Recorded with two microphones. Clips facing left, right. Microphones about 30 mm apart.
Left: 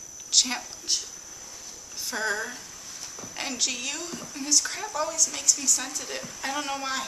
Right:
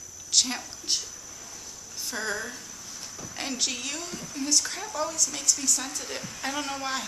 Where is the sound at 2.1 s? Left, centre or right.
Centre.